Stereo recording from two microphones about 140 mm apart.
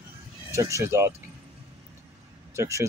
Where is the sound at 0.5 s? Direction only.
20° right (ahead or behind).